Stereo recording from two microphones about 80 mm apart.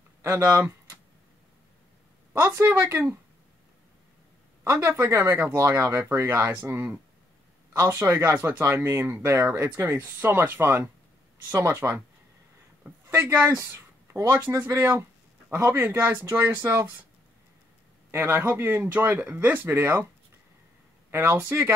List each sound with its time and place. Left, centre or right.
0.2 s speech: right
2.4 s speech: right
4.6 s speech: right
13.0 s a sound: right
13.6 s speech: right
18.1 s speech: right
21.1 s speech: right